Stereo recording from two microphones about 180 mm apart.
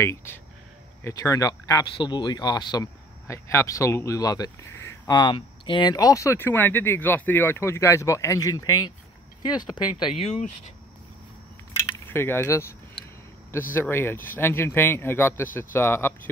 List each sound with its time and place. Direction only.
0.0 s speech: 15° left (ahead or behind)
9.9 s speech: 30° left (ahead or behind)
12.1 s speech: 10° left (ahead or behind)
13.7 s speech: 10° left (ahead or behind)